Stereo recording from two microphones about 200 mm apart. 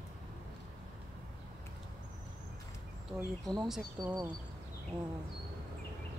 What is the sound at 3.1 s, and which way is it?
Speech, 15° right (ahead or behind).